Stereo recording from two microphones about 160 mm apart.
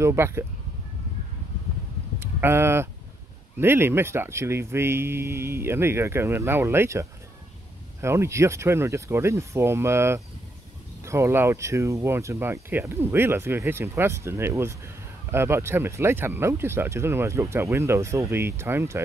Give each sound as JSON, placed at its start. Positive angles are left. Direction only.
{"t": 0.0, "sound": "speech", "side_deg": -15}
{"t": 2.1, "sound": "vehicle", "side_deg": -15}
{"t": 3.5, "sound": "speech", "side_deg": -15}